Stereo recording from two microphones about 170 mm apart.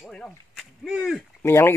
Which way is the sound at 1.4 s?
15° left (ahead or behind).